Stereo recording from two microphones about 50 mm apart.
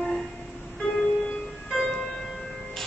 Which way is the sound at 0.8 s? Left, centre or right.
Centre.